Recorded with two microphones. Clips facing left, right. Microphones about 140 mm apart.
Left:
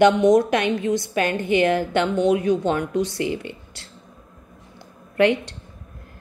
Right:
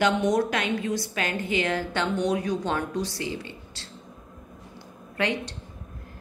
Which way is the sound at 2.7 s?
50° left (ahead or behind).